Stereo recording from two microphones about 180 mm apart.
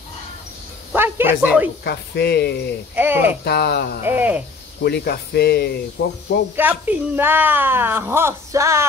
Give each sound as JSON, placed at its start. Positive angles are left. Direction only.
{"t": 0.9, "sound": "speech", "side_deg": -10}
{"t": 1.9, "sound": "speech", "side_deg": 65}
{"t": 3.0, "sound": "speech", "side_deg": -10}
{"t": 3.4, "sound": "speech", "side_deg": 65}
{"t": 4.0, "sound": "speech", "side_deg": -10}
{"t": 4.8, "sound": "speech", "side_deg": 60}
{"t": 6.5, "sound": "speech", "side_deg": -10}